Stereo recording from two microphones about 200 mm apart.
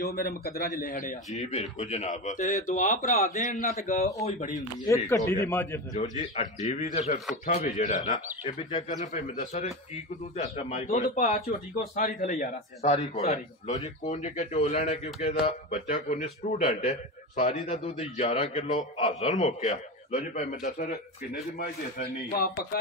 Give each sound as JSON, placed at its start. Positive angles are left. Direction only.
{"t": 0.0, "sound": "a man's voice", "side_deg": 50}
{"t": 4.8, "sound": "speech", "side_deg": 15}
{"t": 6.3, "sound": "a man's voice", "side_deg": 30}
{"t": 19.1, "sound": "a man's voice", "side_deg": 35}